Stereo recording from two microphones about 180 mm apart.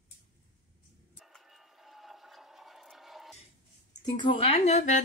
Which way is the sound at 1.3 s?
Centre (ahead or behind).